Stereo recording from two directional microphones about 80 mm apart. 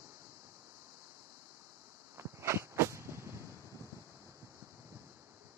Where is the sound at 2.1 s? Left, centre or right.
Right.